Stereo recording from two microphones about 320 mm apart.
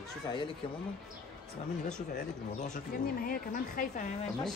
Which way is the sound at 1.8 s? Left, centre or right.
Left.